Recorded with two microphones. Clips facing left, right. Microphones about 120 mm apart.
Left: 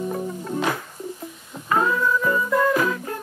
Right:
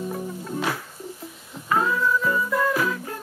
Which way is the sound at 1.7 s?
Centre (ahead or behind).